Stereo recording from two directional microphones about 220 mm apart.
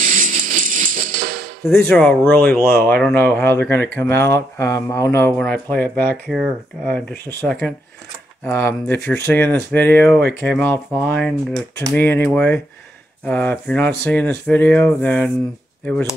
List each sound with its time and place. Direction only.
0.0 s music: 40° right (ahead or behind)
1.8 s speech: 5° left (ahead or behind)